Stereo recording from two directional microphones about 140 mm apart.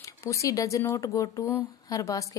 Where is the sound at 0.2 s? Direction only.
20° left (ahead or behind).